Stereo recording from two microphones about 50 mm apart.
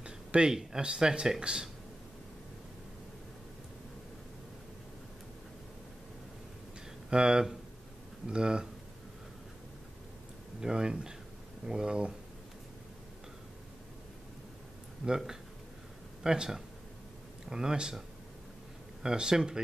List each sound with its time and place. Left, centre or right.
0.0 s speech: centre
7.1 s speech: centre
10.6 s speech: centre
15.0 s speech: centre
19.0 s speech: centre